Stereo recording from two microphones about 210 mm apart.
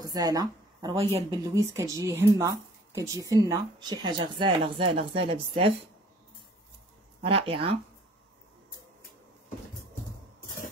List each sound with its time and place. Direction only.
0.0 s speech: 20° right (ahead or behind)
7.2 s speech: 25° right (ahead or behind)